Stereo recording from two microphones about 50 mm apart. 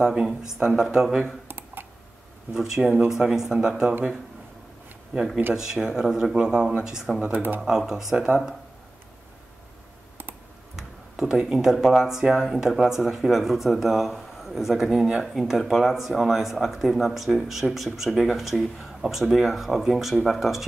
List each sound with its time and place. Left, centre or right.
0.0 s speech: centre
2.5 s speech: centre
5.1 s speech: centre
7.3 s speech: right
7.6 s speech: centre
10.8 s speech: centre